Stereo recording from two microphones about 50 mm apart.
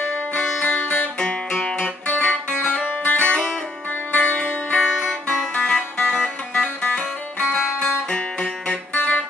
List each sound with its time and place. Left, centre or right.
0.0 s music: left
1.2 s music: centre
6.9 s music: left
8.1 s music: centre
8.9 s music: left